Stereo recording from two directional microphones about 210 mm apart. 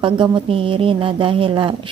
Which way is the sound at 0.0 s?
25° right (ahead or behind).